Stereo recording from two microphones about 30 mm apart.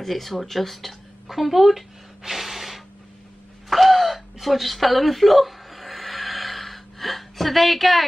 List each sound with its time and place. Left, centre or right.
0.0 s speech: centre
3.7 s gasp: centre